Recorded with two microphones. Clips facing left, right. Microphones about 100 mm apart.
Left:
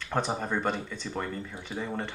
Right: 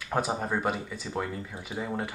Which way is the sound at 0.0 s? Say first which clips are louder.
Right 1 dB; 5° right (ahead or behind).